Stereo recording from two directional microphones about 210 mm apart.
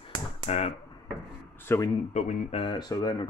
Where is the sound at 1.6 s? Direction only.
10° left (ahead or behind).